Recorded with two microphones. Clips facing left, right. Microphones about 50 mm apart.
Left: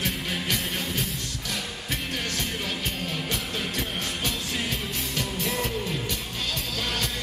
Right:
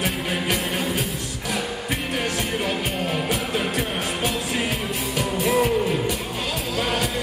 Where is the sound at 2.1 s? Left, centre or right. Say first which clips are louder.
Right 7 dB; right.